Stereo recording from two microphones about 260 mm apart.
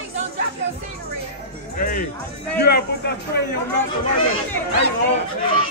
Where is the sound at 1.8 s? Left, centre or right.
Left.